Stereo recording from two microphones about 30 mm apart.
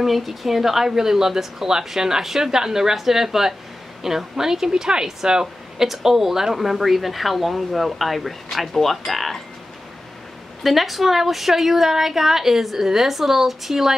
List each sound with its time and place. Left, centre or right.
0.0 s a woman's voice: centre
10.6 s speech: centre